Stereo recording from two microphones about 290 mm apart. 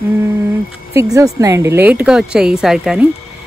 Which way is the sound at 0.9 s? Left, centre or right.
Centre.